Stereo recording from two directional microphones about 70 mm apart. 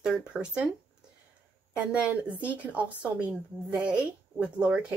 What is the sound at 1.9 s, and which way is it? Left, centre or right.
Speech, right.